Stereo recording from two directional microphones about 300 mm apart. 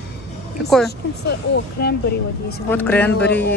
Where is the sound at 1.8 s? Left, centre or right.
Left.